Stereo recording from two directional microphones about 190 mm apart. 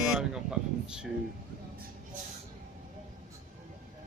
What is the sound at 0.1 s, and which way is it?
Speech, 5° right (ahead or behind).